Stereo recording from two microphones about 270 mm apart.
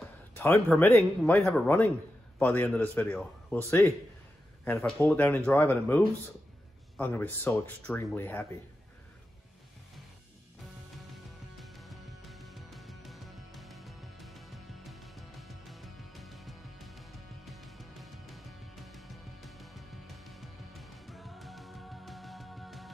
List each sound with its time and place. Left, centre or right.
0.3 s a man's voice: centre
4.6 s speech: centre
11.6 s music: centre